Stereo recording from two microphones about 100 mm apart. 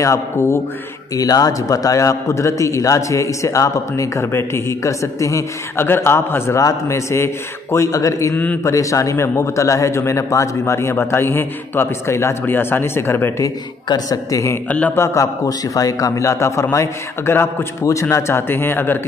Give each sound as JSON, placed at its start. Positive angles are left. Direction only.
{"t": 0.0, "sound": "a man's voice", "side_deg": 30}
{"t": 13.8, "sound": "a man's voice", "side_deg": 40}